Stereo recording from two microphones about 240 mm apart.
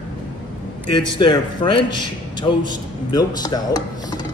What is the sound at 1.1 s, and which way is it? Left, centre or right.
A man's voice, centre.